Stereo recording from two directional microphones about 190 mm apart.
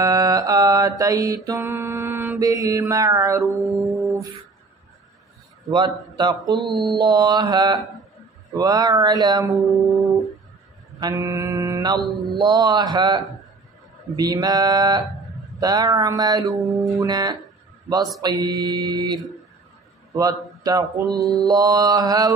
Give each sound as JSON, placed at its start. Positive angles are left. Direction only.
{"t": 0.0, "sound": "mantra", "side_deg": -20}
{"t": 3.7, "sound": "music", "side_deg": 0}
{"t": 6.0, "sound": "mantra", "side_deg": -20}
{"t": 9.6, "sound": "music", "side_deg": 0}
{"t": 11.0, "sound": "mantra", "side_deg": -20}
{"t": 15.1, "sound": "a sound", "side_deg": 0}
{"t": 15.6, "sound": "mantra", "side_deg": -20}
{"t": 16.5, "sound": "music", "side_deg": 0}
{"t": 16.9, "sound": "mantra", "side_deg": -20}
{"t": 20.1, "sound": "speech", "side_deg": -20}
{"t": 21.4, "sound": "mantra", "side_deg": -20}